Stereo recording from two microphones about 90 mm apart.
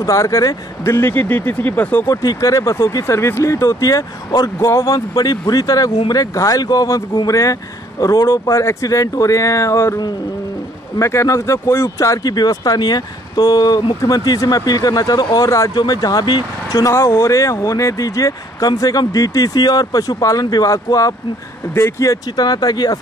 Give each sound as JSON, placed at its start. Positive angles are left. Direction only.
{"t": 0.0, "sound": "speech", "side_deg": 35}
{"t": 2.0, "sound": "speech", "side_deg": 40}
{"t": 11.0, "sound": "speech", "side_deg": 30}